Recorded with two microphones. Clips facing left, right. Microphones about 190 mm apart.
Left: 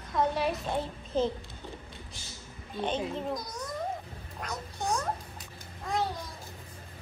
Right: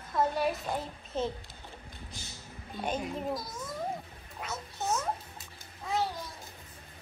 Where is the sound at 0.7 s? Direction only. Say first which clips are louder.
Left 5 dB; 35° left (ahead or behind).